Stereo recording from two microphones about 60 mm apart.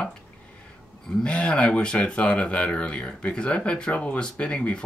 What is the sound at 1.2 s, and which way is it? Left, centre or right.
Speech, centre.